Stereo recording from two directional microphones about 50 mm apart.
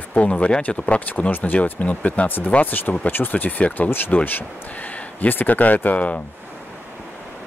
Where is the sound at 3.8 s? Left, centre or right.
Left.